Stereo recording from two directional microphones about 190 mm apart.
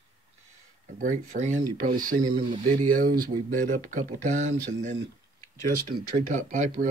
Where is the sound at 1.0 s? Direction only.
40° right (ahead or behind).